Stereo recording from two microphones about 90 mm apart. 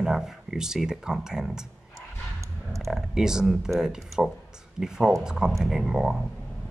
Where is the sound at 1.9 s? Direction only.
35° right (ahead or behind).